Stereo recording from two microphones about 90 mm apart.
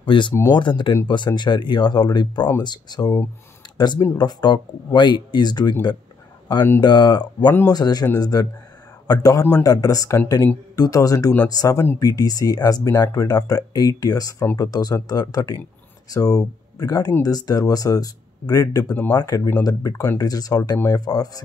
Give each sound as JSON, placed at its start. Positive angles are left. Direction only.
{"t": 0.0, "sound": "speech", "side_deg": 65}
{"t": 6.8, "sound": "speech", "side_deg": 55}